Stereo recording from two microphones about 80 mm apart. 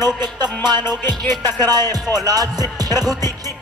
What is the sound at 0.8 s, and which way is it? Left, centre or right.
Music, left.